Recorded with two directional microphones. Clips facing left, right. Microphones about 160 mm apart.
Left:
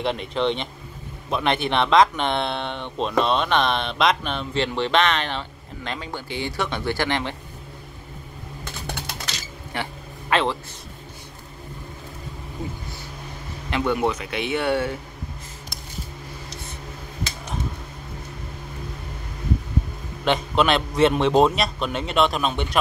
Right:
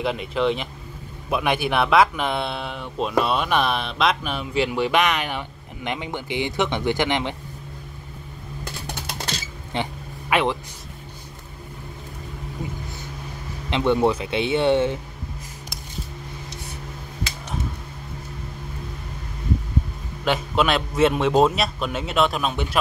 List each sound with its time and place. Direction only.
0.0 s a man's voice: 5° right (ahead or behind)
9.7 s speech: 20° right (ahead or behind)
13.7 s speech: 20° right (ahead or behind)
20.2 s a man's voice: 5° right (ahead or behind)